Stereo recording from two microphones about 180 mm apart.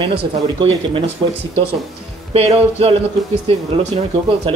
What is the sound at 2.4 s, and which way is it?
Speech, 35° right (ahead or behind).